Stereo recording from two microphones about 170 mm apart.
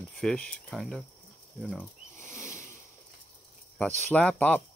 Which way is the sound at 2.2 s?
15° left (ahead or behind).